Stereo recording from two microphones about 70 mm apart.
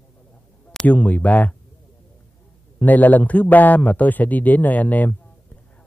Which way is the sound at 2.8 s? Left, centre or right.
Left.